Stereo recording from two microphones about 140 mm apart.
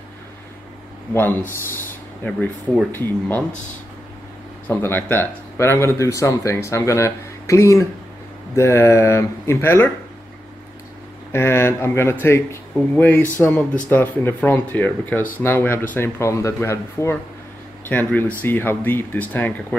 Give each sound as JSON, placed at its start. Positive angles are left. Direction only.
{"t": 1.1, "sound": "speech", "side_deg": 15}
{"t": 4.6, "sound": "speech", "side_deg": 15}
{"t": 11.3, "sound": "speech", "side_deg": 20}